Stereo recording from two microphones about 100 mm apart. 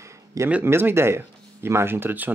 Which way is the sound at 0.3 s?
35° right (ahead or behind).